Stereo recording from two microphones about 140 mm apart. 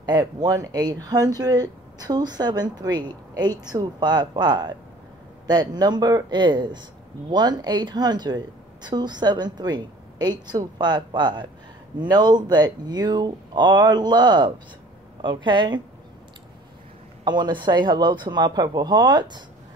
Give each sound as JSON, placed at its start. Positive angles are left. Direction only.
{"t": 0.0, "sound": "a woman's voice", "side_deg": -30}
{"t": 17.2, "sound": "a woman's voice", "side_deg": -30}